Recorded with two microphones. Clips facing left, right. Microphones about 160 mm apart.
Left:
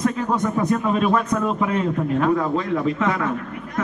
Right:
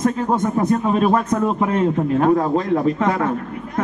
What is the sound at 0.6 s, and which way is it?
A man's voice, 40° right (ahead or behind).